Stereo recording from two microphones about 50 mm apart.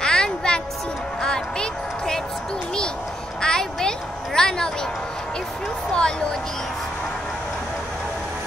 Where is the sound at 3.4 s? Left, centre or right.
Centre.